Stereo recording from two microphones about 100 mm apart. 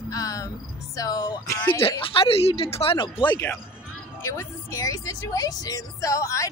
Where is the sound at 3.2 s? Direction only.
20° left (ahead or behind).